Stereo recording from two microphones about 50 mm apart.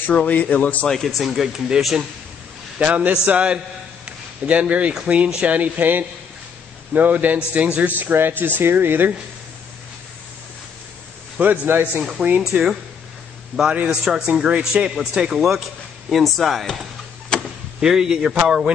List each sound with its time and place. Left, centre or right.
0.1 s a man's voice: left
0.8 s speech: centre
2.8 s a man's voice: right
8.0 s a man's voice: right
11.3 s a man's voice: right
12.3 s a man's voice: right
14.0 s speech: centre
17.3 s a sound: centre
17.7 s speech: centre